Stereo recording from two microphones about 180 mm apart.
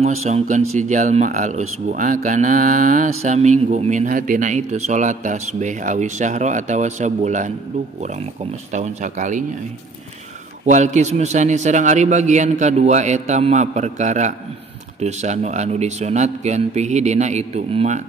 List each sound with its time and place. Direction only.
0.0 s speech: 40° right (ahead or behind)
8.7 s a man's voice: 40° right (ahead or behind)
10.6 s a man's voice: 40° right (ahead or behind)